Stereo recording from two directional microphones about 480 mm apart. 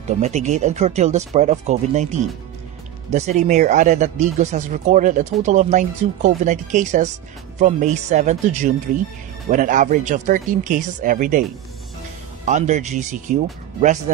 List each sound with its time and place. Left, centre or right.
0.2 s speech: centre
12.4 s speech: centre